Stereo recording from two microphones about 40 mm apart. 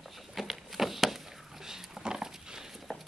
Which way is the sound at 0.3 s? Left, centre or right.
Centre.